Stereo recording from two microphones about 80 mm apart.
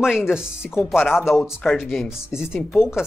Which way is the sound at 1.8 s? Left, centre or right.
Centre.